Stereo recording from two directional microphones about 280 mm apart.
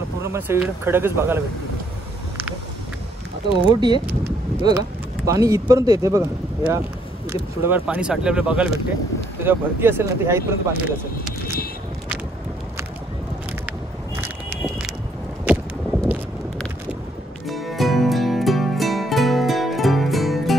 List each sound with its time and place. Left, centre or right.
0.2 s speech: centre
3.6 s speech: centre
14.2 s vehicle: centre
15.5 s a sound: centre
17.5 s music: centre